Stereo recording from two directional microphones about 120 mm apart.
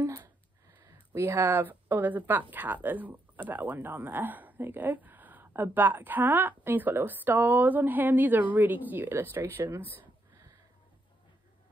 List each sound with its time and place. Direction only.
0.0 s speech: 25° right (ahead or behind)